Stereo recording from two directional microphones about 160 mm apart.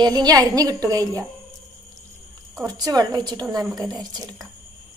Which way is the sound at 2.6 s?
25° right (ahead or behind).